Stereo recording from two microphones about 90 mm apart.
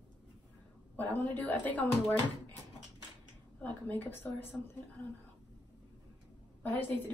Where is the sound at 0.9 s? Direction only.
20° left (ahead or behind).